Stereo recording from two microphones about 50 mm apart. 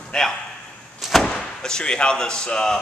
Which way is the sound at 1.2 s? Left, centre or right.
Centre.